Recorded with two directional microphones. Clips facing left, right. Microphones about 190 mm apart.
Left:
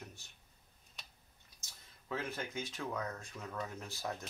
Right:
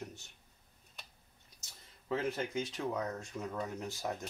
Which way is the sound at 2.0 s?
20° right (ahead or behind).